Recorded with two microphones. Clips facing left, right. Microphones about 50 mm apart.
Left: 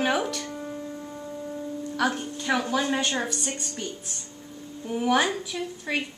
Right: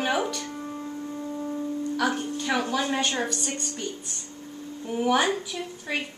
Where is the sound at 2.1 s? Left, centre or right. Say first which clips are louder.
Even; centre.